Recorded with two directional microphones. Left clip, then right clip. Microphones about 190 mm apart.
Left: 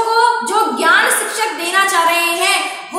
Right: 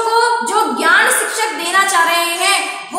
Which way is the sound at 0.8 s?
10° left (ahead or behind).